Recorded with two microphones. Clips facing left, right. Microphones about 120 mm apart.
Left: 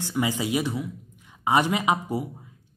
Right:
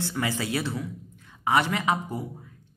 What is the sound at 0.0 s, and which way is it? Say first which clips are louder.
A woman's voice: left 3 dB; 15° left (ahead or behind).